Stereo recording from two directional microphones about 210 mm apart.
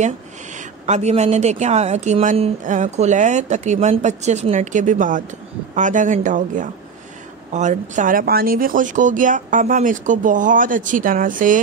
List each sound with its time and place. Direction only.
0.6 s speech: 35° right (ahead or behind)